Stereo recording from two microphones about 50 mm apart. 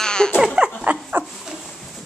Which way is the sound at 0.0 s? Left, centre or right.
Centre.